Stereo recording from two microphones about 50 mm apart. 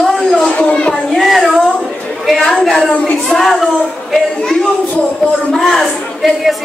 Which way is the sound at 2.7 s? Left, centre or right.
Centre.